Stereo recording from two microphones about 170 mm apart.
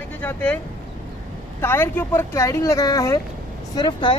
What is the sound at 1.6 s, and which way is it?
Speech, 15° left (ahead or behind).